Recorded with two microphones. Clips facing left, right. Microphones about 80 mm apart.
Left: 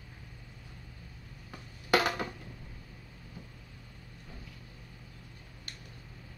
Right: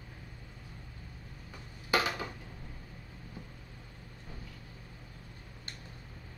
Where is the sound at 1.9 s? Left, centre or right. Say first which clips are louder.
Left 3 dB; left.